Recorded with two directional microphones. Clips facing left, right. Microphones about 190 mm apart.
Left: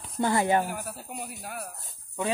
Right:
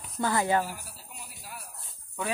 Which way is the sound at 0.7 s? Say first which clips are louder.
Left 7 dB; 60° left (ahead or behind).